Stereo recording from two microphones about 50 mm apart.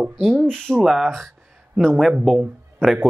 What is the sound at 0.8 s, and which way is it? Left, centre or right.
Speech, centre.